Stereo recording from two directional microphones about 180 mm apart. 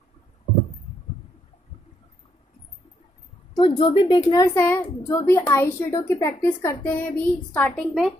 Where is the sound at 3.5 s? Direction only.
25° left (ahead or behind).